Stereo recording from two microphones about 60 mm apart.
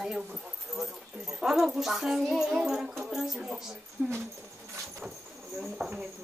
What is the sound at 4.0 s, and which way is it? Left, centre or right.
Speech, right.